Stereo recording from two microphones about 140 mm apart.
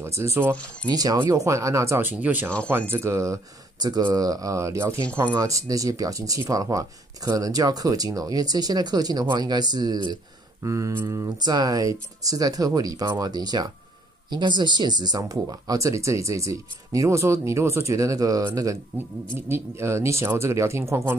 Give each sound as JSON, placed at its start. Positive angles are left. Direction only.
{"t": 0.0, "sound": "speech", "side_deg": -20}
{"t": 0.8, "sound": "speech", "side_deg": -30}
{"t": 11.1, "sound": "speech", "side_deg": -30}